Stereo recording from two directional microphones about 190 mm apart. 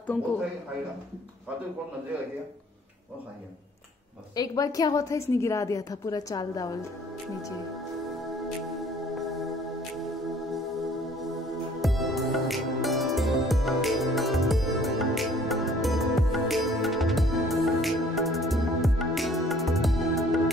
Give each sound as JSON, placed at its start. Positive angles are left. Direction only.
{"t": 4.4, "sound": "a woman's voice", "side_deg": 20}
{"t": 9.1, "sound": "music", "side_deg": 0}
{"t": 11.8, "sound": "music", "side_deg": 0}